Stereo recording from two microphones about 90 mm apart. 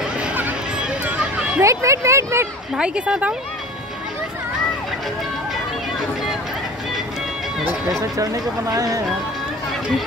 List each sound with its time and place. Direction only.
0.0 s a sound: 15° right (ahead or behind)
1.6 s speech: 35° right (ahead or behind)
2.7 s speech: 10° right (ahead or behind)
8.0 s speech: 40° right (ahead or behind)